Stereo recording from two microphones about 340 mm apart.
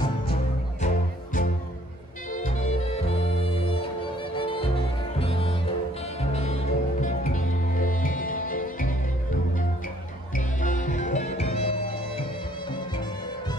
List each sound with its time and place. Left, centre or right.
0.8 s music: left
3.0 s music: centre
10.3 s music: left